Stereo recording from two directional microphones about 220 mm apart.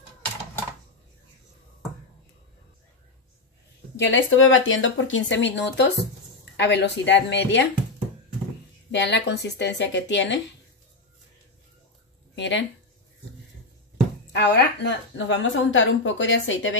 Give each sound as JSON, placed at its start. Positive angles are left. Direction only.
{"t": 4.0, "sound": "a woman's voice", "side_deg": 60}
{"t": 8.9, "sound": "a woman's voice", "side_deg": 50}
{"t": 12.4, "sound": "a woman's voice", "side_deg": 55}
{"t": 14.3, "sound": "a woman's voice", "side_deg": 50}